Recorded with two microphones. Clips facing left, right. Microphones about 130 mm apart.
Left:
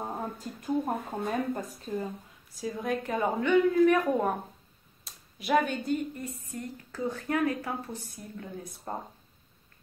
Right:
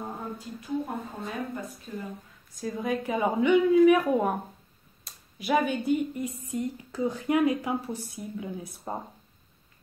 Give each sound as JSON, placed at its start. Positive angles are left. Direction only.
{"t": 0.6, "sound": "speech", "side_deg": 50}
{"t": 1.9, "sound": "speech", "side_deg": 35}
{"t": 2.5, "sound": "a woman's voice", "side_deg": 0}